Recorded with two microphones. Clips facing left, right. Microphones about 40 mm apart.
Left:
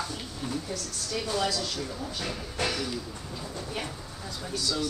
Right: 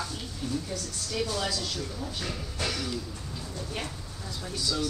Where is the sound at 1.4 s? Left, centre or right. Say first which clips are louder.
Left 2 dB; centre.